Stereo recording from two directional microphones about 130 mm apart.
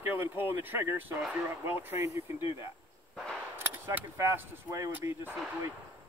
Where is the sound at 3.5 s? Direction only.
20° right (ahead or behind).